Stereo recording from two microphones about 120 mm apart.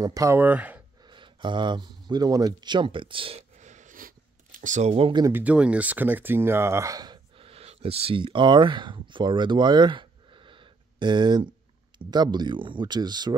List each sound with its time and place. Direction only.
0.0 s speech: 30° right (ahead or behind)
0.4 s speech: 15° right (ahead or behind)
1.0 s speech: 40° right (ahead or behind)
3.5 s a sound: 85° right
4.6 s speech: 90° right
5.3 s speech: 10° right (ahead or behind); by 7.2 s 30° right (ahead or behind)
7.3 s speech: 55° right (ahead or behind); by 13.3 s 35° right (ahead or behind)